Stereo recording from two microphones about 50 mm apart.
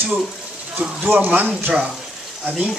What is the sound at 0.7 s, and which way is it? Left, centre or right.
Speech, right.